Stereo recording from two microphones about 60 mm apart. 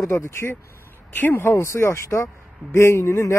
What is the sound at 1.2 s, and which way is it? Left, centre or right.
Speech, left.